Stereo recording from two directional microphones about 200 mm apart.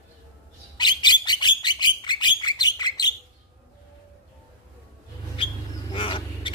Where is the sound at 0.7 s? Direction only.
20° left (ahead or behind).